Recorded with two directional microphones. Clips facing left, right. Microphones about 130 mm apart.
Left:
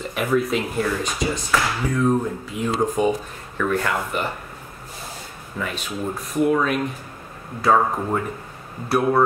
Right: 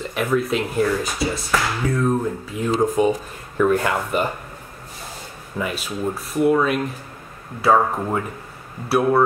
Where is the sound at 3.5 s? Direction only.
20° right (ahead or behind).